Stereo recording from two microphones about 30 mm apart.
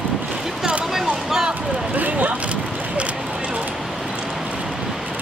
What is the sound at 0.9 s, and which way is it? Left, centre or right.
Boat, centre.